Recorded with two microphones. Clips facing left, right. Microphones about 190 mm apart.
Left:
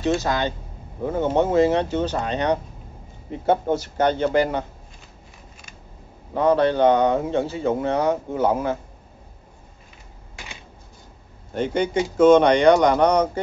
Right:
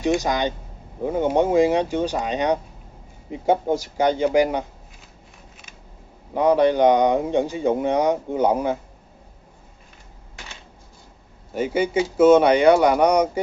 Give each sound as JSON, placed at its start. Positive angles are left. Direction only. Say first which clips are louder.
{"t": 0.0, "sound": "a man's voice", "louder": "right 1 dB", "side_deg": -15}
{"t": 6.3, "sound": "a man's voice", "louder": "right 1 dB", "side_deg": -15}
{"t": 11.5, "sound": "a man's voice", "louder": "right 1 dB", "side_deg": -5}